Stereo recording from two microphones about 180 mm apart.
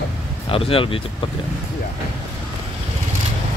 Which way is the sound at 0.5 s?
30° left (ahead or behind).